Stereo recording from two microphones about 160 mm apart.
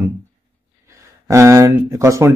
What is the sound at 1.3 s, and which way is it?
Speech, 20° right (ahead or behind).